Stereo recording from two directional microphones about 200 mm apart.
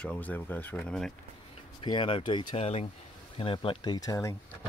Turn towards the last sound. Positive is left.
turn(degrees=15)  # may be behind; listen again after turning